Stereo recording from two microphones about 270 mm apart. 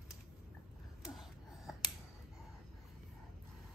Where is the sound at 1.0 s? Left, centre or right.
Centre.